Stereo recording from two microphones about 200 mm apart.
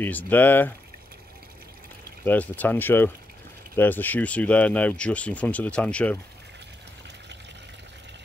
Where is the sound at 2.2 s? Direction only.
10° left (ahead or behind).